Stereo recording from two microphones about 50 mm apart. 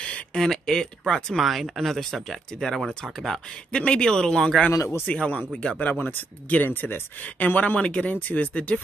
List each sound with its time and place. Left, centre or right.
0.0 s a sound: left
0.4 s speech: centre
1.4 s speech: centre
3.7 s speech: centre